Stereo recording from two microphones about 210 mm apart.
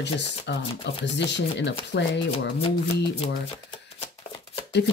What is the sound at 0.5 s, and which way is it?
Speech, 55° left (ahead or behind).